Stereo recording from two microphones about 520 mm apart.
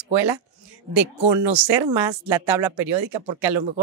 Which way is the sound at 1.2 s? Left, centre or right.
Right.